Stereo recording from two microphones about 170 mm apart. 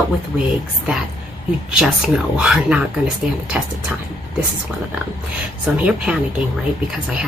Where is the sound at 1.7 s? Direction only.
5° right (ahead or behind).